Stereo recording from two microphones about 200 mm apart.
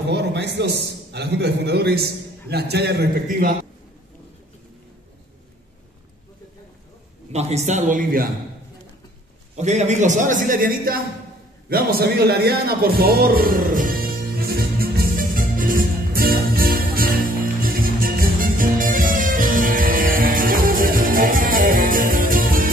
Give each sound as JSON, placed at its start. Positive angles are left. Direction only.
{"t": 0.1, "sound": "a man's voice", "side_deg": -60}
{"t": 7.3, "sound": "a man's voice", "side_deg": -35}
{"t": 9.6, "sound": "a man's voice", "side_deg": -35}
{"t": 11.7, "sound": "music", "side_deg": -50}